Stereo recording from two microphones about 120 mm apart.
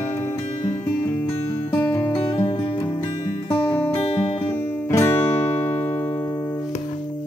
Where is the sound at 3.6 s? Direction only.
20° left (ahead or behind).